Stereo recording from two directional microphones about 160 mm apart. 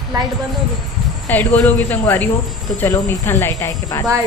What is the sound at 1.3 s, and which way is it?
A woman's voice, 10° left (ahead or behind).